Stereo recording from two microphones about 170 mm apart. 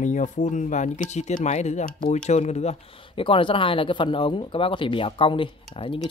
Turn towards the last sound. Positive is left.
turn(degrees=30)  # may be behind; listen again after turning